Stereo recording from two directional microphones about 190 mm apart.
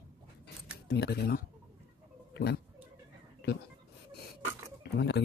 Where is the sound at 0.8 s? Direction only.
60° left (ahead or behind).